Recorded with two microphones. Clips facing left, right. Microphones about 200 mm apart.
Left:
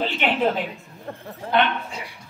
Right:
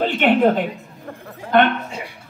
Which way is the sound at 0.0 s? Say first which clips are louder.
Right 6 dB; 50° right (ahead or behind).